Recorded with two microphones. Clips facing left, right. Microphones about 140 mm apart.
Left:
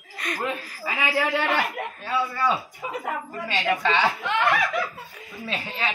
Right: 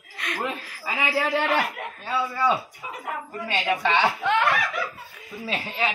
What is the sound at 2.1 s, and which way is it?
Speech, 15° right (ahead or behind).